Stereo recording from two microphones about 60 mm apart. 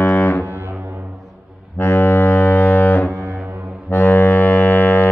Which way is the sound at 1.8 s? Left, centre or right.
Left.